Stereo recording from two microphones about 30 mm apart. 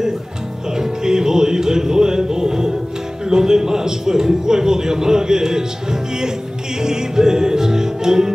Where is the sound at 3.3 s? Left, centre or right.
Centre.